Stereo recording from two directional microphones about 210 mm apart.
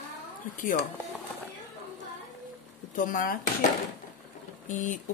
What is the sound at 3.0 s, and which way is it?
Speech, 40° left (ahead or behind).